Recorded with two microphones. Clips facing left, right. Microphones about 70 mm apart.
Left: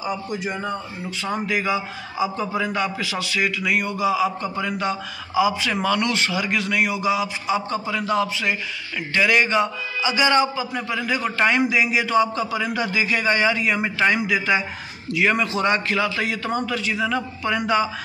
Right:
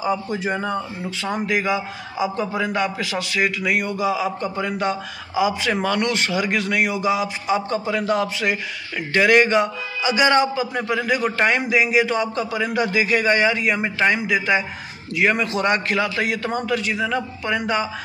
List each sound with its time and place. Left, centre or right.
1.7 s a man's voice: right
11.3 s a man's voice: right
13.9 s a man's voice: right
15.1 s a man's voice: right
16.9 s a man's voice: right